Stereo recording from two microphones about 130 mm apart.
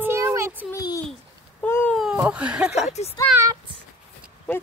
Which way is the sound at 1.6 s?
15° left (ahead or behind).